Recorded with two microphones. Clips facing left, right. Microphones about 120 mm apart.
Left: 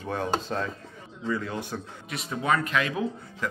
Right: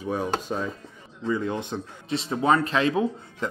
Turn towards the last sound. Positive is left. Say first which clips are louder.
# right 4 dB
turn(degrees=-30)  # may be behind; listen again after turning